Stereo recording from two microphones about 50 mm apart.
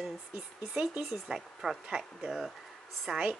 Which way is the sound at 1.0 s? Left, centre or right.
Centre.